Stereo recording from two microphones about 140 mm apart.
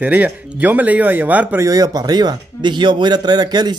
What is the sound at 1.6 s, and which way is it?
Speech, 25° right (ahead or behind).